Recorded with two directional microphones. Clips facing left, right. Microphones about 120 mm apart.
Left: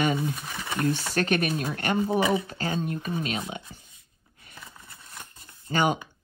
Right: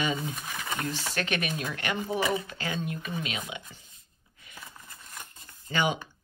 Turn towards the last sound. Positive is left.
turn(degrees=45)  # may be behind; listen again after turning